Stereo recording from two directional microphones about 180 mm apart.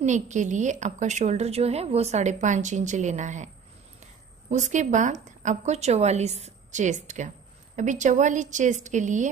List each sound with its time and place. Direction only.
0.0 s a woman's voice: 40° right (ahead or behind)
4.5 s speech: 40° right (ahead or behind)